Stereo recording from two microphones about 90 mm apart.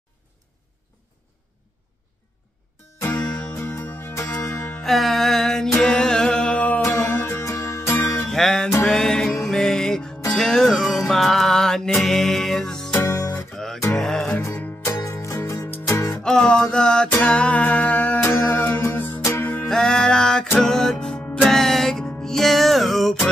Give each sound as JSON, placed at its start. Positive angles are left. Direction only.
{"t": 3.0, "sound": "music", "side_deg": 35}
{"t": 4.8, "sound": "music", "side_deg": 0}
{"t": 6.8, "sound": "music", "side_deg": 25}
{"t": 8.3, "sound": "music", "side_deg": 5}
{"t": 13.0, "sound": "music", "side_deg": 40}
{"t": 13.9, "sound": "music", "side_deg": 5}
{"t": 14.9, "sound": "music", "side_deg": 35}
{"t": 15.6, "sound": "music", "side_deg": 20}
{"t": 16.2, "sound": "music", "side_deg": 10}
{"t": 19.7, "sound": "music", "side_deg": 5}